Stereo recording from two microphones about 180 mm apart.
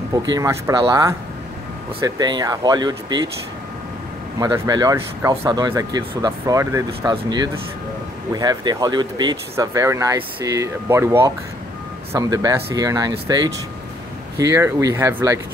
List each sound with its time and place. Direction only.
0.2 s speech: 20° right (ahead or behind)
4.4 s speech: 20° right (ahead or behind)